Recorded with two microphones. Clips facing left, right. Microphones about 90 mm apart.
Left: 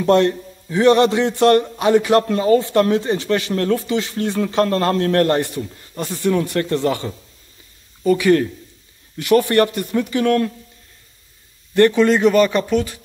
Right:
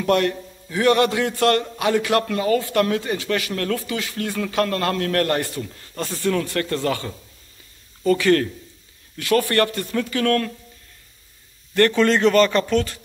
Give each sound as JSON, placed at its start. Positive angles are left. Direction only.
{"t": 0.0, "sound": "a man's voice", "side_deg": 25}
{"t": 11.7, "sound": "speech", "side_deg": 15}